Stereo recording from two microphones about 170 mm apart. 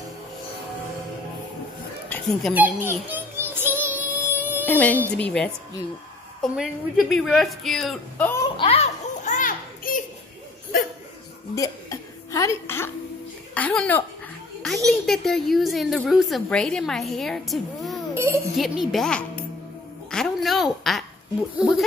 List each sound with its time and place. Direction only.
2.0 s a sound: 5° left (ahead or behind)
2.5 s child singing: 10° right (ahead or behind)
4.6 s a woman's voice: 10° left (ahead or behind)
8.5 s children playing: 35° left (ahead or behind); by 10.0 s 55° left (ahead or behind)
11.5 s a sound: 20° left (ahead or behind)
13.6 s a woman's voice: 10° left (ahead or behind)
18.1 s music: 15° right (ahead or behind)
18.6 s a woman's voice: centre (ahead or behind)
20.1 s a sound: centre (ahead or behind)
21.5 s a woman's voice: 5° right (ahead or behind)